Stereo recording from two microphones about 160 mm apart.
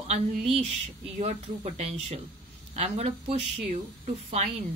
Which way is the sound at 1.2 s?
40° right (ahead or behind).